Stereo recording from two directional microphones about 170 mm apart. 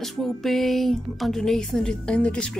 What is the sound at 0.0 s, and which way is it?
Speech, centre (ahead or behind).